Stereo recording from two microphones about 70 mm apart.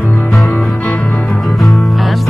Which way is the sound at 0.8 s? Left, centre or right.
Left.